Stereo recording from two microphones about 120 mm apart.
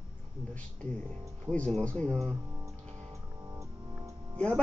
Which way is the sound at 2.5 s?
25° right (ahead or behind).